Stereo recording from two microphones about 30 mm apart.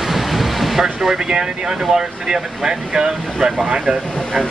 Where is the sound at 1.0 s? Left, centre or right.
Right.